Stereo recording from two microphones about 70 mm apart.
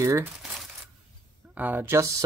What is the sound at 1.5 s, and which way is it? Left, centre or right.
Speech, right.